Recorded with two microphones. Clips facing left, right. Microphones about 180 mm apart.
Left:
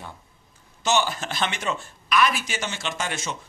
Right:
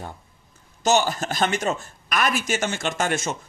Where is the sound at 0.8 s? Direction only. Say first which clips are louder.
Right 3 dB; 40° right (ahead or behind).